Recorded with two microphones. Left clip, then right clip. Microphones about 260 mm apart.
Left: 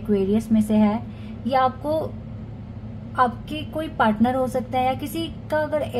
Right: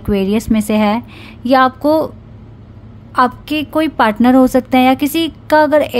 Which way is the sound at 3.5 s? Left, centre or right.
Right.